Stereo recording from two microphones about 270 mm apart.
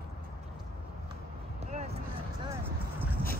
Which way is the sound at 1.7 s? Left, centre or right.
Right.